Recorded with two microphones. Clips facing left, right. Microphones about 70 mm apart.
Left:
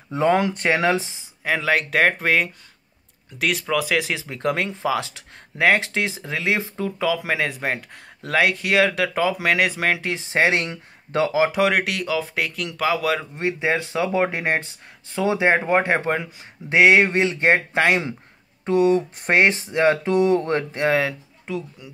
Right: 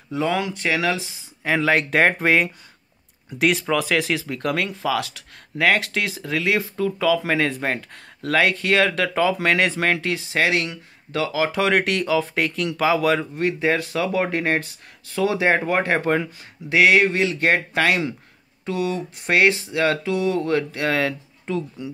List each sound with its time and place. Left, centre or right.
0.1 s speech: left
1.4 s speech: centre
4.1 s speech: centre
10.1 s speech: left
11.6 s speech: centre
13.4 s speech: centre
16.6 s speech: left
18.7 s speech: left
20.0 s speech: left
20.8 s speech: centre